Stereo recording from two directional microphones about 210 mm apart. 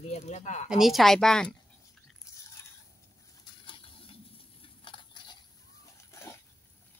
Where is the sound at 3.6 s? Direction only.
25° left (ahead or behind).